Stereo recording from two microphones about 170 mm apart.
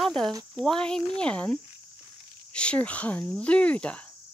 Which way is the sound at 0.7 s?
5° left (ahead or behind).